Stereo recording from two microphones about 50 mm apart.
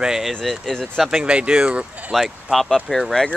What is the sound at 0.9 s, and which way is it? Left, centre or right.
Speech, centre.